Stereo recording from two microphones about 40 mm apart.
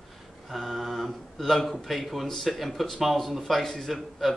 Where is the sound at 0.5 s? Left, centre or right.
Centre.